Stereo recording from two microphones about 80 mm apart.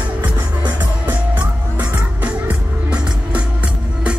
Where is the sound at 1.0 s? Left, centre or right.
Centre.